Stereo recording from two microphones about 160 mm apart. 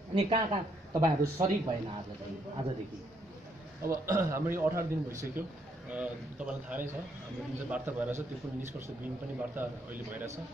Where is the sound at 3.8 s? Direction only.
15° right (ahead or behind).